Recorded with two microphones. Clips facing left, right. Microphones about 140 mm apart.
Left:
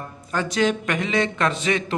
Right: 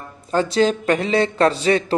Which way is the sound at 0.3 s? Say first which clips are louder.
Right 4 dB; 30° right (ahead or behind).